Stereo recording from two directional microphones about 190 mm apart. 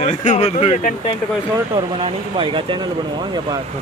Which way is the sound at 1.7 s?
25° right (ahead or behind).